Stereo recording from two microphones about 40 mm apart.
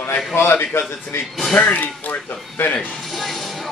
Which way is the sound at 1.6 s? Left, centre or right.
Left.